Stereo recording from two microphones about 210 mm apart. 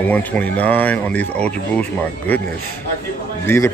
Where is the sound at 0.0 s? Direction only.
5° left (ahead or behind).